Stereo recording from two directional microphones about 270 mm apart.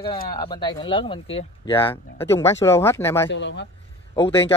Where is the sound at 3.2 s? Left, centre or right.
Left.